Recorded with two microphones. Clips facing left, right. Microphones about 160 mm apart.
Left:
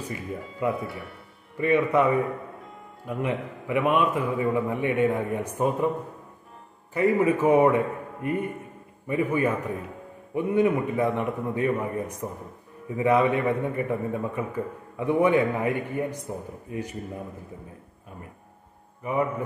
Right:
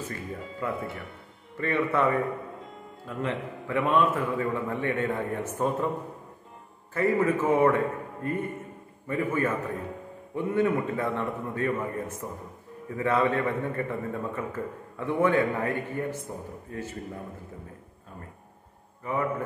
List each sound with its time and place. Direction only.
0.1 s a man's voice: 15° left (ahead or behind)
6.9 s a man's voice: 15° left (ahead or behind)
19.0 s a man's voice: 15° left (ahead or behind)